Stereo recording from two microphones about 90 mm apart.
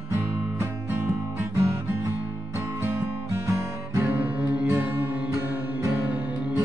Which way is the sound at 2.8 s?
30° right (ahead or behind).